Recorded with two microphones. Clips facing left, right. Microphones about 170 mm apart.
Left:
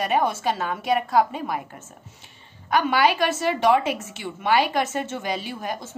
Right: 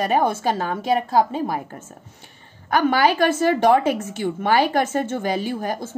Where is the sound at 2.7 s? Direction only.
40° right (ahead or behind).